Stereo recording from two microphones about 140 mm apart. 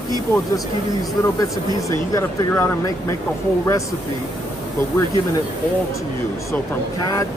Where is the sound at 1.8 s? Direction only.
20° left (ahead or behind).